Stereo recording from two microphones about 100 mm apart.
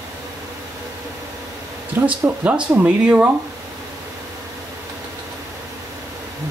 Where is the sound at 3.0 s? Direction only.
10° right (ahead or behind).